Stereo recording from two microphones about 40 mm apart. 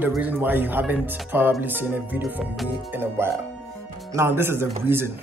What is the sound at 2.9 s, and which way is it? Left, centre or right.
Speech, right.